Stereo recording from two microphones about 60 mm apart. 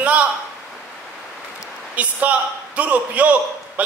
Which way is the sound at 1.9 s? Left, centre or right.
Right.